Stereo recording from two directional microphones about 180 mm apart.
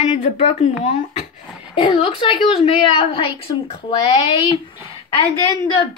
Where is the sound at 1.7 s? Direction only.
30° left (ahead or behind).